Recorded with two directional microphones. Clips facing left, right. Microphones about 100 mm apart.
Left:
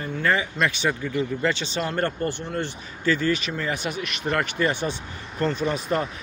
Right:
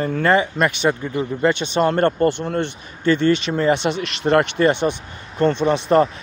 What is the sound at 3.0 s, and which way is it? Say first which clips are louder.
Speech: right 6 dB; 25° right (ahead or behind).